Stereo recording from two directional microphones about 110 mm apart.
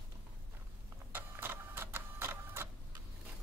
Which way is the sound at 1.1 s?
20° right (ahead or behind).